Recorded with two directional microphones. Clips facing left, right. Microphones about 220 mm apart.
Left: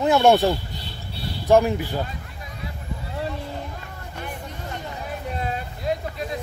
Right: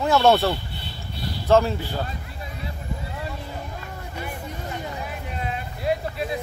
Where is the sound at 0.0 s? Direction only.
15° left (ahead or behind).